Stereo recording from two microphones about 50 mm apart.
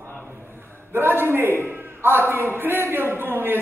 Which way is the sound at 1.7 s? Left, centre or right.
Right.